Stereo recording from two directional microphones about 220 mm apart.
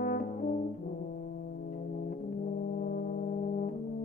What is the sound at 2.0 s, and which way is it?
Brass instrument, 40° left (ahead or behind).